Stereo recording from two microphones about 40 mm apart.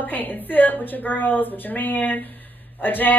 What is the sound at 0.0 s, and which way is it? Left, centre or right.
A woman's voice, left.